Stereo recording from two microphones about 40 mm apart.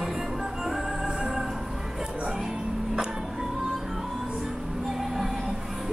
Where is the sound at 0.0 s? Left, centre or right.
Centre.